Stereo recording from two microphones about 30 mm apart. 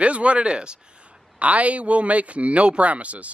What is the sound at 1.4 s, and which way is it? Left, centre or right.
Speech, right.